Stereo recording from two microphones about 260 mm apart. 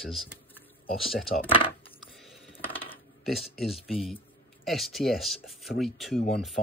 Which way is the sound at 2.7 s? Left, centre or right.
Left.